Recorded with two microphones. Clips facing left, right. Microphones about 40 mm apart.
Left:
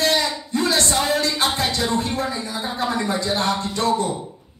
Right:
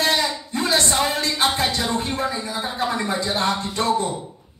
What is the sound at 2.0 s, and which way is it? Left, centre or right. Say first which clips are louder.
Speech: even; centre.